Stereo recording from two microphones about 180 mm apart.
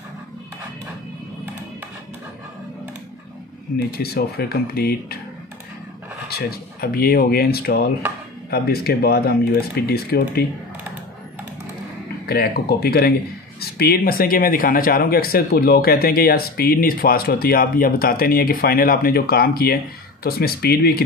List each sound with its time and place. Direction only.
3.7 s speech: 60° left (ahead or behind)
6.2 s speech: 60° left (ahead or behind)
12.3 s speech: 60° left (ahead or behind)